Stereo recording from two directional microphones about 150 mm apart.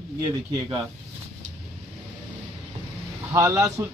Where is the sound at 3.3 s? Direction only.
20° right (ahead or behind).